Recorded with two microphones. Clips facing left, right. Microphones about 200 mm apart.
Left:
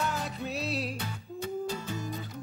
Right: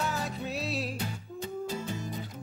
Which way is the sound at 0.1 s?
Centre (ahead or behind).